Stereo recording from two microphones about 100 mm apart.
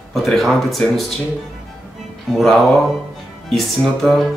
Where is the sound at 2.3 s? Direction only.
Centre (ahead or behind).